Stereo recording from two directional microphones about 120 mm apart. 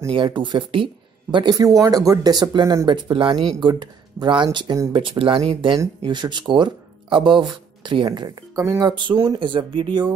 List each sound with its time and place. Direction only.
0.1 s speech: 40° right (ahead or behind)